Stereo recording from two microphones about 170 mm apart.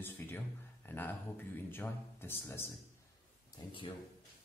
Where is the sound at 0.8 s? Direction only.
10° left (ahead or behind).